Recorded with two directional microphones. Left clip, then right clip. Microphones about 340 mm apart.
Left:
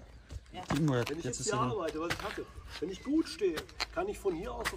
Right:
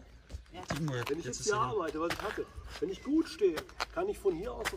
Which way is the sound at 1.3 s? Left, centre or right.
Centre.